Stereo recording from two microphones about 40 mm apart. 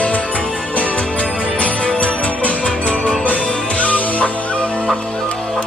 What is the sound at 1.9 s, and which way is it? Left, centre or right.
Music, left.